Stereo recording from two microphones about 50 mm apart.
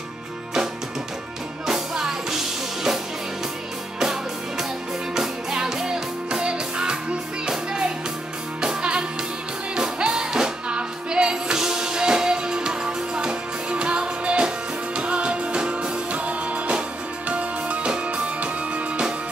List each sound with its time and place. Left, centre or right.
1.7 s music: centre
4.0 s music: centre